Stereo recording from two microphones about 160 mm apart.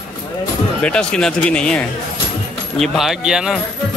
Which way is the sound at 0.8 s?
5° left (ahead or behind).